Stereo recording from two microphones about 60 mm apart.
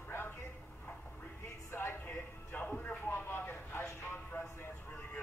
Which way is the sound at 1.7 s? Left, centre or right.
Left.